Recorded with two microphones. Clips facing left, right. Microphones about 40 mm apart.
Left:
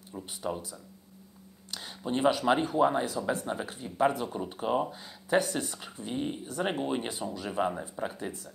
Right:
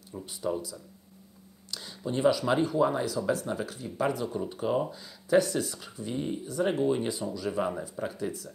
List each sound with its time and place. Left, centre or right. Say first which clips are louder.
0.1 s speech: right 1 dB; centre
1.7 s speech: left 1 dB; left
6.4 s speech: right 4 dB; left